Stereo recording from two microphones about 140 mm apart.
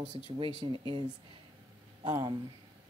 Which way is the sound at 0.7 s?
35° right (ahead or behind).